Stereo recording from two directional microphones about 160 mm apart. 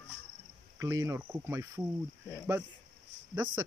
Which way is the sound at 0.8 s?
20° right (ahead or behind).